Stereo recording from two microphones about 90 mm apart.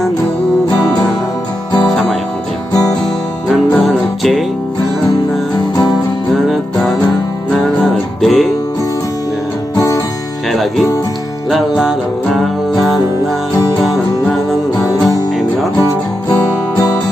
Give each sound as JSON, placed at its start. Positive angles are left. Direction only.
{"t": 3.4, "sound": "music", "side_deg": 0}
{"t": 6.5, "sound": "music", "side_deg": 0}
{"t": 9.8, "sound": "music", "side_deg": 40}
{"t": 10.5, "sound": "music", "side_deg": 0}
{"t": 15.8, "sound": "music", "side_deg": 40}